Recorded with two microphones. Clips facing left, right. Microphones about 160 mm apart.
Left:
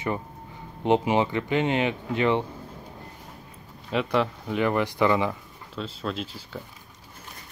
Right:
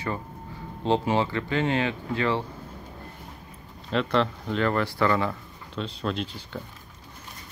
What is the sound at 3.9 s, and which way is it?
Speech, 10° left (ahead or behind).